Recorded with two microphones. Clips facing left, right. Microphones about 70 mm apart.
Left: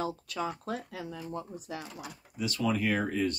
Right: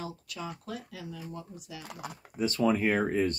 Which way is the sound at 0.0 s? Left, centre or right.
Left.